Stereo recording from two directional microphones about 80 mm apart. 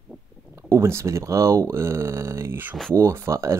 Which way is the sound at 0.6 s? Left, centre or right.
Right.